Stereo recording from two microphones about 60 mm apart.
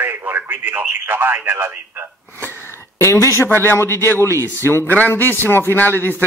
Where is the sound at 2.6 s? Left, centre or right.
Left.